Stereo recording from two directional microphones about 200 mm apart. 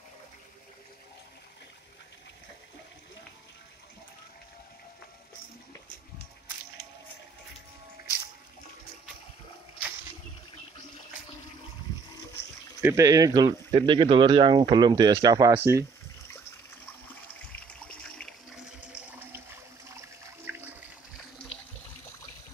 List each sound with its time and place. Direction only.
12.8 s speech: 15° right (ahead or behind)
17.8 s water: 5° left (ahead or behind)
20.5 s water: 10° right (ahead or behind)